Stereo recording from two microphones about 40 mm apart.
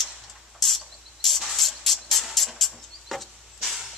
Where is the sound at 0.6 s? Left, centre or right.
Centre.